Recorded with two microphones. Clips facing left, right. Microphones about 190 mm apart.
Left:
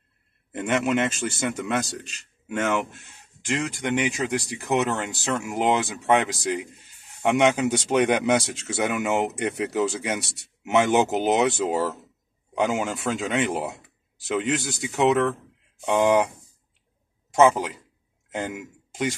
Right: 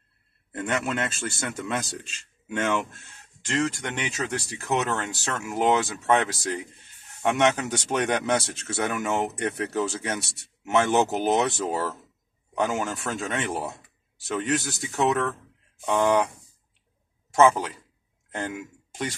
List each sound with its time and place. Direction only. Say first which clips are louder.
0.6 s speech: left 5 dB; 15° left (ahead or behind)
17.4 s a man's voice: left 1 dB; 15° left (ahead or behind)